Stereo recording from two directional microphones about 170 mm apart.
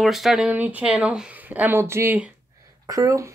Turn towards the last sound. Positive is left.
turn(degrees=-20)  # may be behind; listen again after turning